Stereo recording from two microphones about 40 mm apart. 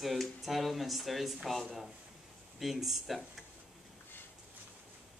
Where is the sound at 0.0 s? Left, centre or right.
Centre.